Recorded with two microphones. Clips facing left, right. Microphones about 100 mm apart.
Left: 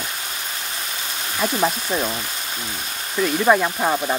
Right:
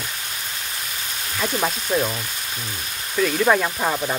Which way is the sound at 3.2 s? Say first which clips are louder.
Left 1 dB; 10° left (ahead or behind).